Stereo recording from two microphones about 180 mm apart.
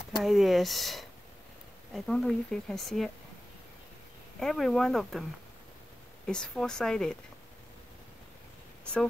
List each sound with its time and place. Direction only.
0.2 s speech: centre (ahead or behind)
4.4 s speech: centre (ahead or behind)
6.2 s speech: 5° left (ahead or behind)